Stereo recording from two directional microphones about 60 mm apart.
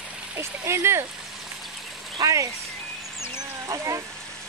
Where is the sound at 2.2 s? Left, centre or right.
Right.